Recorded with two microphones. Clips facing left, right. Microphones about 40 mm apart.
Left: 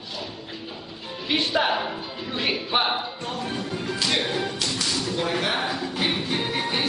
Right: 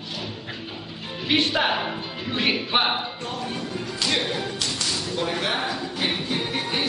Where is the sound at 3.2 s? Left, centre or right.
Centre.